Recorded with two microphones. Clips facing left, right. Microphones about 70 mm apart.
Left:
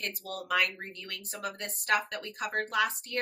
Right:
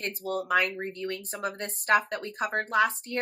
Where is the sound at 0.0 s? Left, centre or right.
Right.